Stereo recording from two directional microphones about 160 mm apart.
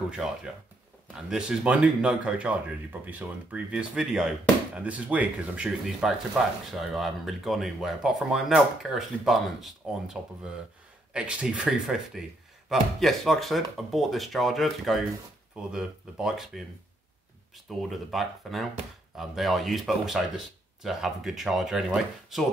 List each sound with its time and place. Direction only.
0.1 s speech: 5° right (ahead or behind)
11.1 s speech: 5° right (ahead or behind)
17.6 s speech: centre (ahead or behind)